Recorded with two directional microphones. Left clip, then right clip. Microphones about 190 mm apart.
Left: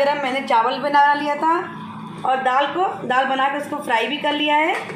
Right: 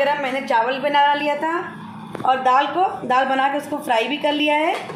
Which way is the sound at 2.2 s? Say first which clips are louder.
Right 2 dB; 15° right (ahead or behind).